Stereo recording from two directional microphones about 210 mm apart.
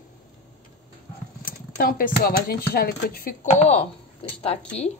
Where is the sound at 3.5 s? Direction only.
30° left (ahead or behind).